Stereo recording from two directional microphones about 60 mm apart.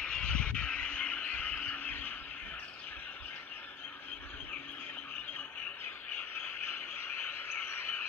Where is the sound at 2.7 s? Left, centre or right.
Left.